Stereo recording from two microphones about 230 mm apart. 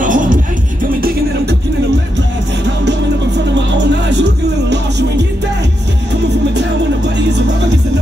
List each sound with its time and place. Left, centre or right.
0.0 s music: right
3.5 s music: right
7.2 s music: right